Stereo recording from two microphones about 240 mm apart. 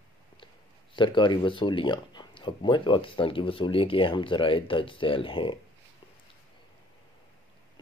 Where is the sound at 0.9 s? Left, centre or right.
Centre.